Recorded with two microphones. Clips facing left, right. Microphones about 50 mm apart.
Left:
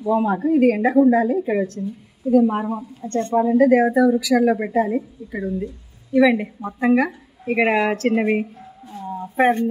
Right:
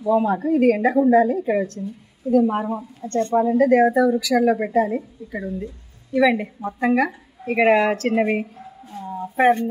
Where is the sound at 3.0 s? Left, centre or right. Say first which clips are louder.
Right 1 dB; left.